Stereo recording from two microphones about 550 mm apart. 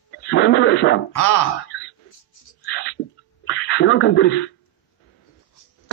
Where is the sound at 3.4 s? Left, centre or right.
Centre.